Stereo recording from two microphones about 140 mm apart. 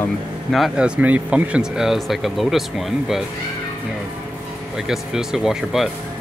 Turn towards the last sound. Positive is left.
turn(degrees=-5)  # may be behind; listen again after turning